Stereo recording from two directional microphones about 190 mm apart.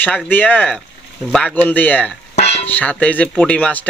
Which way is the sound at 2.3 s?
35° left (ahead or behind).